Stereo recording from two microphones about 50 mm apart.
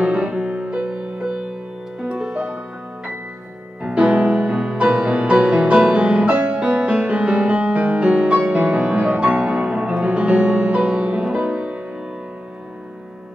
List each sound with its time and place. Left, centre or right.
0.0 s music: right
2.3 s music: right
3.8 s music: centre